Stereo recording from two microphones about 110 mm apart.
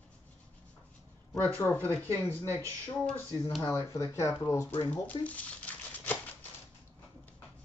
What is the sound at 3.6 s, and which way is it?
Speech, 30° left (ahead or behind).